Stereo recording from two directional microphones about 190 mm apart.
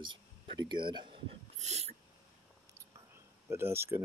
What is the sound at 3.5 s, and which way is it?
Speech, 15° right (ahead or behind).